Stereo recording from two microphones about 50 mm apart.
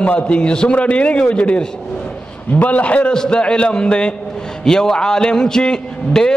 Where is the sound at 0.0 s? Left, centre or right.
Left.